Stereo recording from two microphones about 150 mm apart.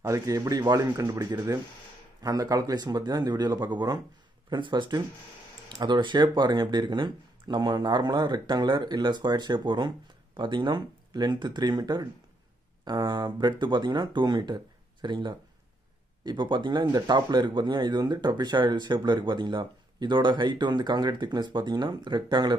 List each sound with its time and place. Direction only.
0.0 s speech: 25° right (ahead or behind)